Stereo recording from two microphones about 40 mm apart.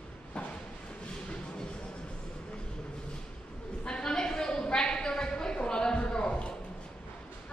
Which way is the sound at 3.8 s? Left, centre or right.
Left.